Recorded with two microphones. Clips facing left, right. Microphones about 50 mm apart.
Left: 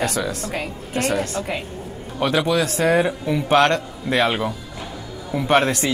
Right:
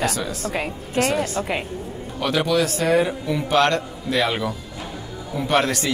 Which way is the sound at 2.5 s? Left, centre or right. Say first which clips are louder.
Right 1 dB; left.